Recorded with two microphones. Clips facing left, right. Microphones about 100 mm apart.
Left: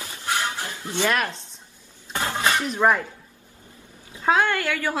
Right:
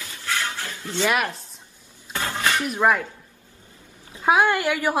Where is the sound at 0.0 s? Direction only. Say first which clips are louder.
Left 2 dB; 25° left (ahead or behind).